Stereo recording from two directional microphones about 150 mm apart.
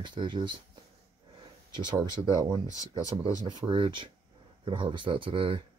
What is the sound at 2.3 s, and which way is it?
Speech, 25° right (ahead or behind).